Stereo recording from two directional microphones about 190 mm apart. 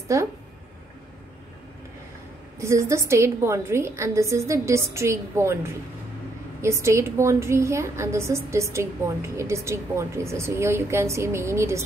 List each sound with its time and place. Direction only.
0.1 s a woman's voice: 15° right (ahead or behind)
2.6 s a woman's voice: 15° right (ahead or behind)